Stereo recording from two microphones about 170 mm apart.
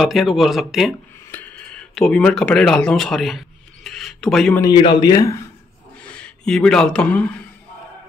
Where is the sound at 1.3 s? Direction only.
10° left (ahead or behind).